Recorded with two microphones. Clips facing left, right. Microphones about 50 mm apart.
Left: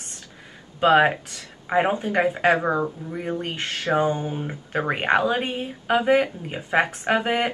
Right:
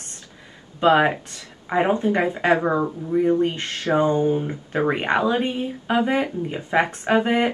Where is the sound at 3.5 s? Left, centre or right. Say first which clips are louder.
Right 1 dB; centre.